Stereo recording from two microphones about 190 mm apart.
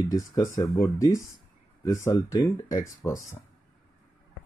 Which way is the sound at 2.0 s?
15° left (ahead or behind).